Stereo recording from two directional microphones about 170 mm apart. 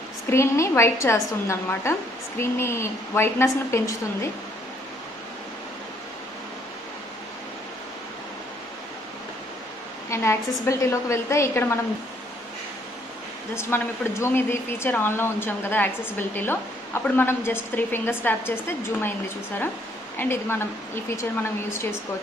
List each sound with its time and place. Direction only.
0.3 s speech: 15° left (ahead or behind)
10.0 s a woman's voice: 15° left (ahead or behind)
13.6 s speech: 15° left (ahead or behind)